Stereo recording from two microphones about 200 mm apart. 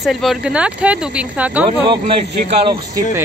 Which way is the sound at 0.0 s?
Centre (ahead or behind).